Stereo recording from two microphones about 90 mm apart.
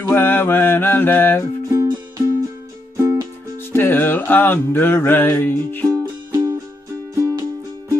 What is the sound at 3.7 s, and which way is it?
Music, 25° left (ahead or behind).